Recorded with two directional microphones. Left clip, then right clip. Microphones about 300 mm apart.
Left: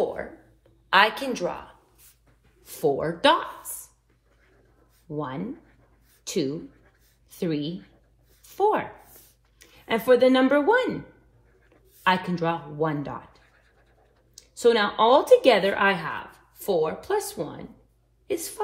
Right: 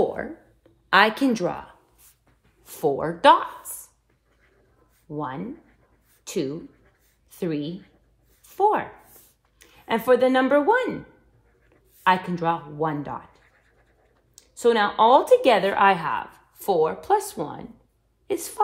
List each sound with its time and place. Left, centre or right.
0.8 s a woman's voice: right
2.6 s speech: centre
5.0 s a woman's voice: centre
8.5 s a sound: centre
12.0 s a woman's voice: centre
14.6 s a woman's voice: centre